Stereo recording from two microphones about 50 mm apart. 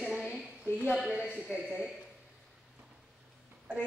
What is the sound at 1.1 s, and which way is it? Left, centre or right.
Speech, centre.